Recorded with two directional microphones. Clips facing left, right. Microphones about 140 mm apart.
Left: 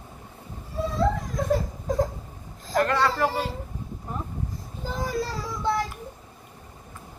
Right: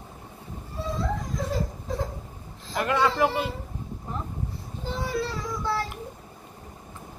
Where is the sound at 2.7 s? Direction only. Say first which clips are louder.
Left 1 dB; 10° right (ahead or behind).